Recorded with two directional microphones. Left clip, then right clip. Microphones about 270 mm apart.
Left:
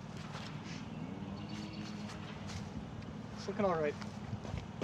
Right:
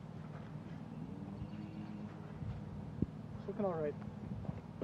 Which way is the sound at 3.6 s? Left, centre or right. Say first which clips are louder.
Left 5 dB; centre.